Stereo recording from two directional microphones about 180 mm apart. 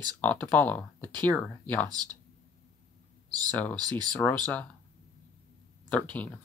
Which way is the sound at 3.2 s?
20° right (ahead or behind).